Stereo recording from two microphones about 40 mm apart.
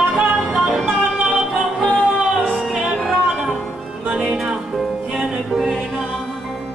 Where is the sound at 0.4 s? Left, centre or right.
Centre.